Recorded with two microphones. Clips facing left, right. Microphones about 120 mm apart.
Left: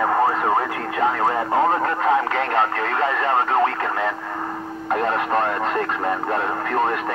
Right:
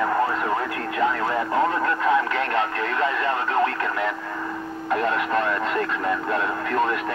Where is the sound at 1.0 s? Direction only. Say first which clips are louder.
Left 3 dB; 35° left (ahead or behind).